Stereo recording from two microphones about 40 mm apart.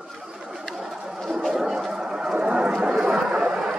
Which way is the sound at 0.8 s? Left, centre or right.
Centre.